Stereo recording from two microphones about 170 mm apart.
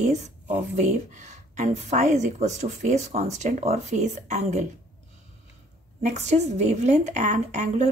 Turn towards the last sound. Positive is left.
turn(degrees=-45)  # may be behind; listen again after turning